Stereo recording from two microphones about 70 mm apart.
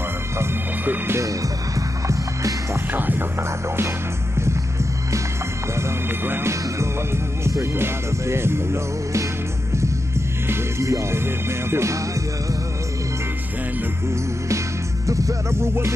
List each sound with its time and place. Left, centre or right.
0.8 s music: right
1.8 s music: right
2.9 s music: right
5.8 s music: right
10.5 s music: right
15.0 s music: right